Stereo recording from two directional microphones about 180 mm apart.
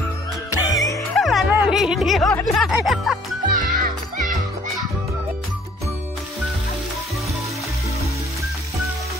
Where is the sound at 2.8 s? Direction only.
Centre (ahead or behind).